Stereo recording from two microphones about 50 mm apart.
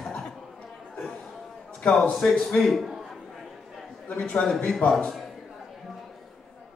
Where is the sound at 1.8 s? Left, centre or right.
Centre.